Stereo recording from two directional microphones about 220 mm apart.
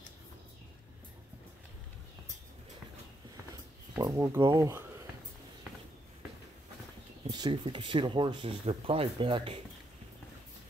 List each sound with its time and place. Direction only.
3.9 s speech: 15° right (ahead or behind)
7.2 s speech: 20° right (ahead or behind)